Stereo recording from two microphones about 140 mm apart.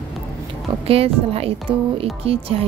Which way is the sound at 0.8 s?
45° right (ahead or behind).